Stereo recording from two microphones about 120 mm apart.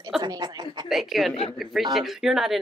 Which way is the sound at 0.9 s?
Centre (ahead or behind).